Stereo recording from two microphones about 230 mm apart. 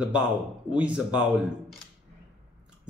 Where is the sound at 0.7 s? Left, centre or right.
Centre.